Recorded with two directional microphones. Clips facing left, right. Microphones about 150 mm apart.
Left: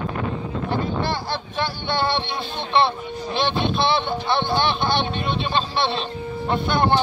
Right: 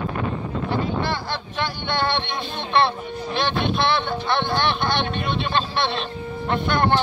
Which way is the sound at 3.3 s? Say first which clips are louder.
Left 1 dB; 30° left (ahead or behind).